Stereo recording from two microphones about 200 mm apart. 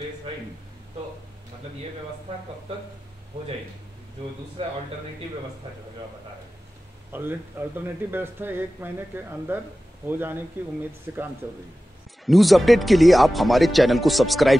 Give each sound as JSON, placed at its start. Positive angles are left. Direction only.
{"t": 4.6, "sound": "speech", "side_deg": -25}
{"t": 7.1, "sound": "speech", "side_deg": -10}
{"t": 12.3, "sound": "speech", "side_deg": 0}